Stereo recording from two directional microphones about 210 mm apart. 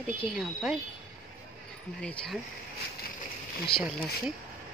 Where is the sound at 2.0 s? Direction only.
5° left (ahead or behind).